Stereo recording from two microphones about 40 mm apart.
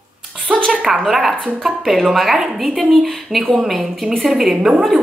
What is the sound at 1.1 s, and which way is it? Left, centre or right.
A woman's voice, centre.